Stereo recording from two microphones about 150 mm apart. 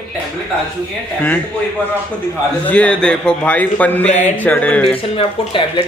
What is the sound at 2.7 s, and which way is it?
A man's voice, 10° left (ahead or behind).